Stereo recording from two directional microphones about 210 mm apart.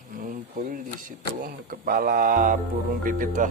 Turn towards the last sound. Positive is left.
turn(degrees=-40)  # may be behind; listen again after turning